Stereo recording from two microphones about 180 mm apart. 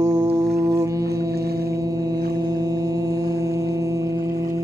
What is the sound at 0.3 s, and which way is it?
Music, 65° right (ahead or behind).